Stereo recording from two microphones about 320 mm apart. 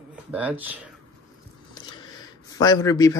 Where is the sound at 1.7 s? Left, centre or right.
Centre.